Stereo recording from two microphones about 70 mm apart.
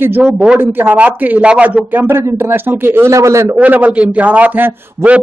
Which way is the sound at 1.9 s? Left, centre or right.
Right.